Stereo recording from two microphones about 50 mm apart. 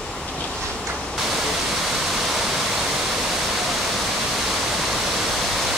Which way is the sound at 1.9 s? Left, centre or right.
Centre.